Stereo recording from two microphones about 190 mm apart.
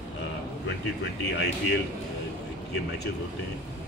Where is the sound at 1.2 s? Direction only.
60° left (ahead or behind).